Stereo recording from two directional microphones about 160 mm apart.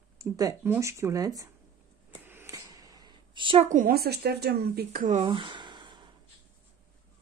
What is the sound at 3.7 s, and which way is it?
Speech, 65° right (ahead or behind).